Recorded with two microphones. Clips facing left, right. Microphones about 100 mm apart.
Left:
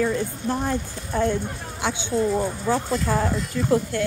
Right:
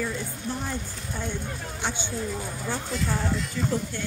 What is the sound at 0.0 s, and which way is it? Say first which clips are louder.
A woman's voice: left 7 dB; 65° left (ahead or behind).